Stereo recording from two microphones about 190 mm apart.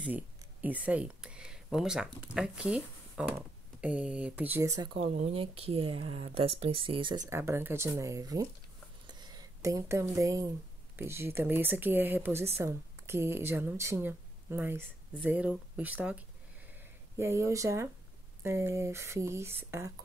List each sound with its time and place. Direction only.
0.0 s speech: 10° right (ahead or behind)
4.9 s speech: 35° right (ahead or behind); by 8.5 s 20° right (ahead or behind)
9.0 s a sound: 20° right (ahead or behind)
11.0 s speech: 15° right (ahead or behind)